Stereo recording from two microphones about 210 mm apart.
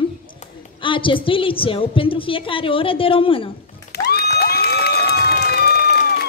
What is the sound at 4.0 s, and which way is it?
Music, 15° left (ahead or behind).